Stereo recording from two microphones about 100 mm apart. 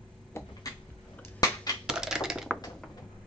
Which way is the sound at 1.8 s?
5° right (ahead or behind).